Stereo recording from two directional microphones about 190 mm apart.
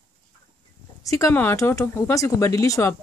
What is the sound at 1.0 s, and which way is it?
Speech, 15° left (ahead or behind).